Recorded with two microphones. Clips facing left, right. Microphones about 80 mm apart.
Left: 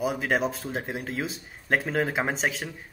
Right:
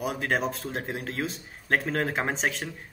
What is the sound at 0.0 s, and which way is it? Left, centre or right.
Speech, centre.